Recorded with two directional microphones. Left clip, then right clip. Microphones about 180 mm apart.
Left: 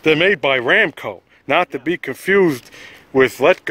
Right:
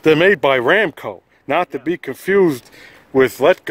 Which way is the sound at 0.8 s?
15° right (ahead or behind).